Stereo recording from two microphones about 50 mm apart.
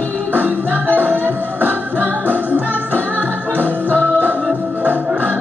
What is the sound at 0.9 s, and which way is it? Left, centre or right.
Music, right.